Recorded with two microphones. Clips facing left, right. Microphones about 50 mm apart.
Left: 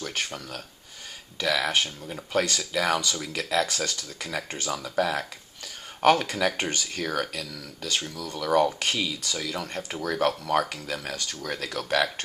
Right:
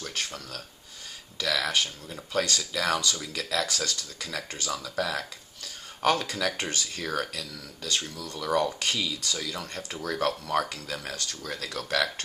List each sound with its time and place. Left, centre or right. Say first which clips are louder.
0.0 s speech: left 3 dB; left
8.5 s speech: left 4 dB; left